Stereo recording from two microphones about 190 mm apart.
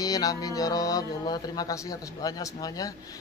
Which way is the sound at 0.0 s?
20° left (ahead or behind).